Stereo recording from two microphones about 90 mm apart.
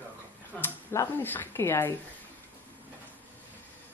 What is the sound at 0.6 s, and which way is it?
Speech, 25° left (ahead or behind).